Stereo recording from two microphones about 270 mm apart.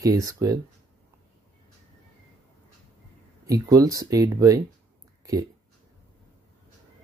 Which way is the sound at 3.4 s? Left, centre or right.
Centre.